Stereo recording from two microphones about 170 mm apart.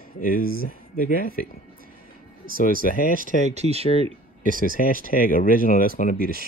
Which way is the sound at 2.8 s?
55° left (ahead or behind).